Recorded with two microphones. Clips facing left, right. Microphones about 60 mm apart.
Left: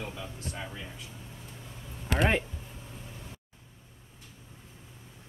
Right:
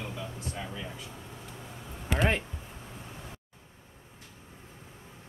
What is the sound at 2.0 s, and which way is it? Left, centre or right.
Speech, centre.